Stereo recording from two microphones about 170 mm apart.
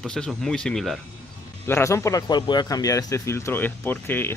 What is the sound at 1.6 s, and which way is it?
Speech, 15° left (ahead or behind).